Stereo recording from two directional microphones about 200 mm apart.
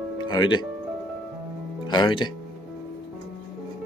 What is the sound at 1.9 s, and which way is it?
Speech, 25° left (ahead or behind).